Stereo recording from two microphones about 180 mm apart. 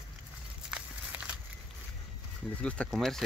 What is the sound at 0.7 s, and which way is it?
Walk, 5° right (ahead or behind).